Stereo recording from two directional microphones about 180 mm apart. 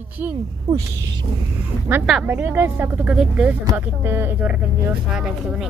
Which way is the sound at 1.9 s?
10° right (ahead or behind).